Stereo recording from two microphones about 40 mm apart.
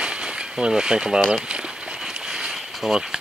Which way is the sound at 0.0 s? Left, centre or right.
Right.